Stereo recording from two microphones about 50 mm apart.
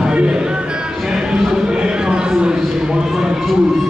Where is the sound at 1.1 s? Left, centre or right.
Centre.